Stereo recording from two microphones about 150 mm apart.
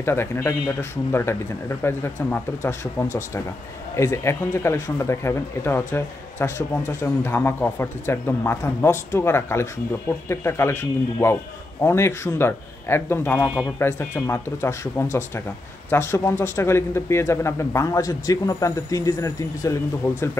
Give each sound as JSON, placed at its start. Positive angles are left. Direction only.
{"t": 0.0, "sound": "a man's voice", "side_deg": 15}
{"t": 1.8, "sound": "a man's voice", "side_deg": 15}
{"t": 3.9, "sound": "a man's voice", "side_deg": 20}